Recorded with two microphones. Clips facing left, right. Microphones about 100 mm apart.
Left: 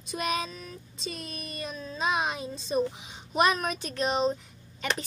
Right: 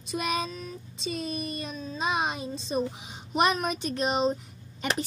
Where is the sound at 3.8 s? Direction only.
20° right (ahead or behind).